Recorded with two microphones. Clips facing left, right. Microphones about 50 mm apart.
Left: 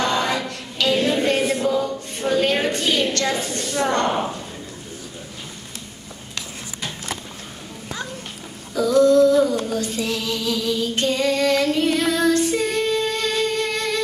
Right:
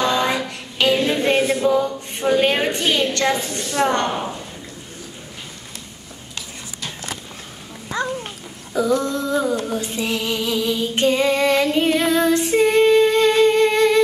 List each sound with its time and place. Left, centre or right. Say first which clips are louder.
0.0 s music: right 2 dB; right
1.5 s a capella: right 3 dB; right
3.0 s a woman's voice: right 2 dB; right
8.7 s female singing: left 5 dB; right